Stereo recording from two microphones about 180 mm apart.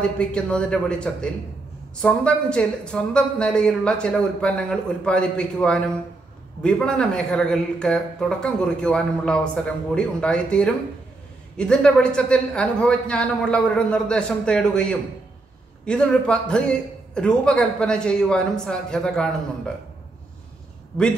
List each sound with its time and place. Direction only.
0.0 s a man's voice: 5° left (ahead or behind)